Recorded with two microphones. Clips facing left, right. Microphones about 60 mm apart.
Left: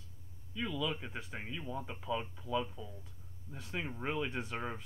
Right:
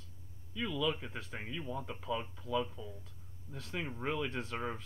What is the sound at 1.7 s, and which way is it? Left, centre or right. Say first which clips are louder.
Speech: even; centre.